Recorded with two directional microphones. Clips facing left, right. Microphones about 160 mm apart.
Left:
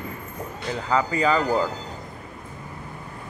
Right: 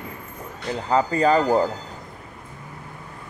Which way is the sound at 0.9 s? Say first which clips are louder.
Right 3 dB; 35° right (ahead or behind).